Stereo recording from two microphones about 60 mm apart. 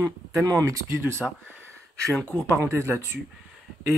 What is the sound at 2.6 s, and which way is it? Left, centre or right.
Speech, right.